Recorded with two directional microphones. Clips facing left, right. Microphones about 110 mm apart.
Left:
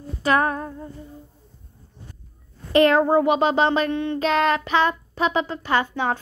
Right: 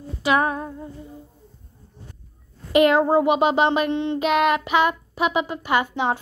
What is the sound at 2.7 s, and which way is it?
Speech, 15° right (ahead or behind).